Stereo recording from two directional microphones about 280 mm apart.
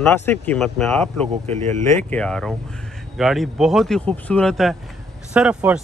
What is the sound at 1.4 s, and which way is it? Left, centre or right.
Speech, right.